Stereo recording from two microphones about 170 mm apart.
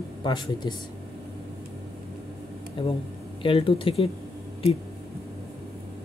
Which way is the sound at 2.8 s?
30° left (ahead or behind).